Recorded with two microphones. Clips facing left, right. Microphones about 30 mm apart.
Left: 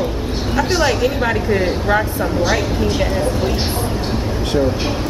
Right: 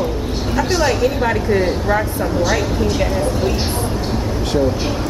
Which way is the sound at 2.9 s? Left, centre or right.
Centre.